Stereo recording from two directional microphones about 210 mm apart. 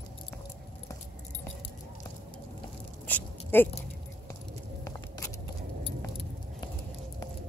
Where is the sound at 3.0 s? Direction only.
10° left (ahead or behind).